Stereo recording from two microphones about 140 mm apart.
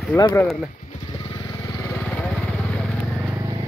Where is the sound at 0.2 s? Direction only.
25° left (ahead or behind).